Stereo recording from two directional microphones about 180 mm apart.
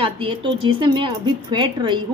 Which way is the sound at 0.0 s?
30° right (ahead or behind).